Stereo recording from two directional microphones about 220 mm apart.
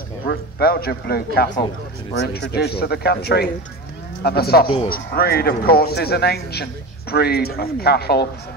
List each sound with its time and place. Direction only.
0.3 s a man's voice: 45° left (ahead or behind)